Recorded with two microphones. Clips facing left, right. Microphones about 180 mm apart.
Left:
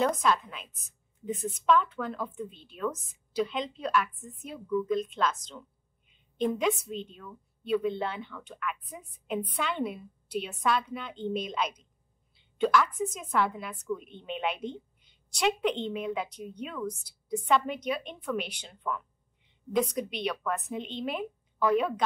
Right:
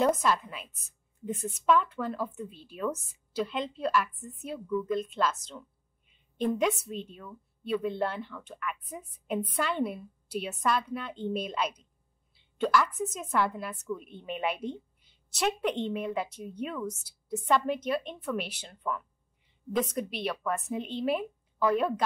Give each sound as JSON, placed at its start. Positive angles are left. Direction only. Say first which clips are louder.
{"t": 0.0, "sound": "speech", "louder": "right 1 dB", "side_deg": -5}
{"t": 6.0, "sound": "a sound", "louder": "even", "side_deg": 0}
{"t": 6.8, "sound": "a woman's voice", "louder": "left 1 dB", "side_deg": -5}